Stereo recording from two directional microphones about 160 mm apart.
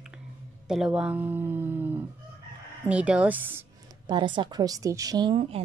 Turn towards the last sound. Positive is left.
turn(degrees=-35)  # may be behind; listen again after turning